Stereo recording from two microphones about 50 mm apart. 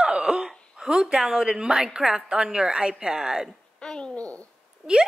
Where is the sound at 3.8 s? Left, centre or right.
Centre.